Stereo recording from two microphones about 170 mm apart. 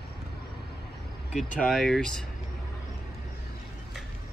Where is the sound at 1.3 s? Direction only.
Centre (ahead or behind).